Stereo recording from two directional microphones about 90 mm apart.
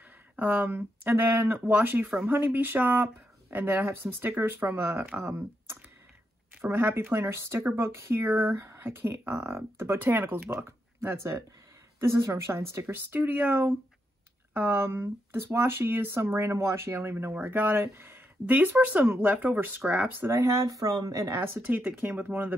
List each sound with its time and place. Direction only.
0.4 s speech: 20° right (ahead or behind)
1.6 s speech: 15° right (ahead or behind); by 12.8 s 30° right (ahead or behind)
12.8 s speech: 20° right (ahead or behind)
20.3 s speech: 35° right (ahead or behind)
21.6 s speech: 15° right (ahead or behind)